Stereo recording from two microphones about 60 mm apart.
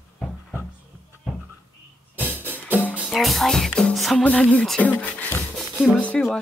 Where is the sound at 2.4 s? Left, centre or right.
Left.